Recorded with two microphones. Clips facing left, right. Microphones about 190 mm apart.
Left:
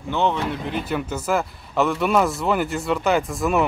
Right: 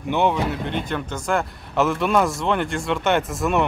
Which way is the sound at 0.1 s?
10° right (ahead or behind).